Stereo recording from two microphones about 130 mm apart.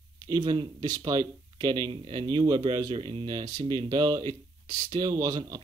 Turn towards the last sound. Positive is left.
turn(degrees=-30)  # may be behind; listen again after turning